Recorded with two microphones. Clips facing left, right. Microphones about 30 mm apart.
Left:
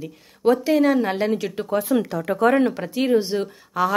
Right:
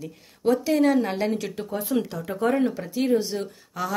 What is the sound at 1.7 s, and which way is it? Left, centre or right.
Speech, left.